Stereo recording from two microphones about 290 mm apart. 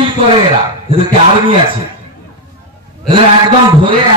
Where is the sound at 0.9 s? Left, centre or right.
Centre.